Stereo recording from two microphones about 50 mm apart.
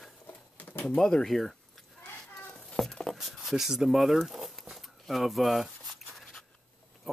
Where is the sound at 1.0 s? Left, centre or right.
Centre.